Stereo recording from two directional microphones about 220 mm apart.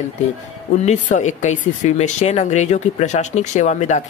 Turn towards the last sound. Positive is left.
turn(degrees=30)  # may be behind; listen again after turning